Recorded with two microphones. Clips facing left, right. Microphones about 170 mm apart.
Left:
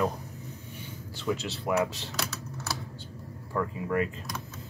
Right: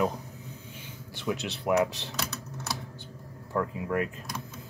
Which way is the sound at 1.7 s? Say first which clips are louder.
Right 2 dB; 15° right (ahead or behind).